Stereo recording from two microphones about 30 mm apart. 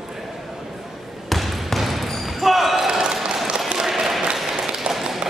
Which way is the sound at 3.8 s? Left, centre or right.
Centre.